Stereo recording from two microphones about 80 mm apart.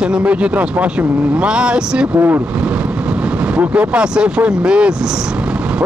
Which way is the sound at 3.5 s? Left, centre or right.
Centre.